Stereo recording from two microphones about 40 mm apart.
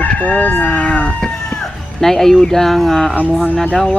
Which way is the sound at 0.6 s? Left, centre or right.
Left.